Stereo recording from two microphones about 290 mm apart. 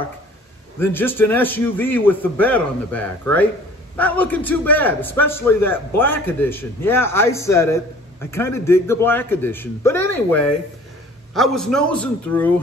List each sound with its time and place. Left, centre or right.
0.7 s a man's voice: centre